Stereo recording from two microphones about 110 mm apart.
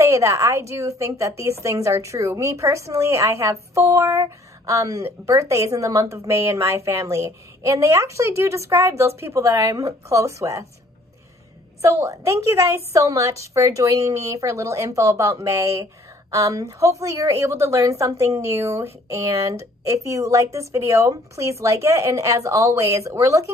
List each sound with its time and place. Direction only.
0.0 s a woman's voice: 25° right (ahead or behind)
11.8 s a woman's voice: 30° right (ahead or behind)